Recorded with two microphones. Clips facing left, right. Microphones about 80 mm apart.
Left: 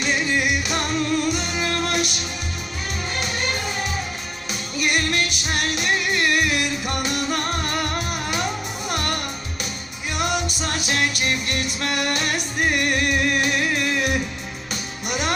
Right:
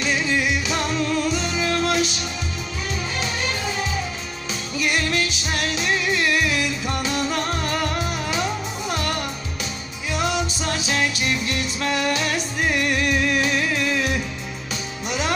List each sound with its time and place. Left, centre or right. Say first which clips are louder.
0.0 s music: even; left
3.2 s music: left 2 dB; left
4.7 s music: even; left
10.2 s music: even; left
14.7 s music: even; left